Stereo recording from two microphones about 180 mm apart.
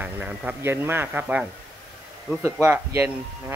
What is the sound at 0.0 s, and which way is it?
Speech, 10° right (ahead or behind).